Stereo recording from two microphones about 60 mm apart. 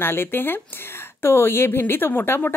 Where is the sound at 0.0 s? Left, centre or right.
Left.